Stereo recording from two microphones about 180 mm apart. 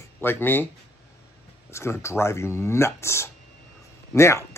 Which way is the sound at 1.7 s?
15° left (ahead or behind).